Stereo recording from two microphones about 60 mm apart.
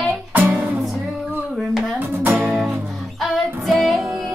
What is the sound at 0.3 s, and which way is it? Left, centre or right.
Music, right.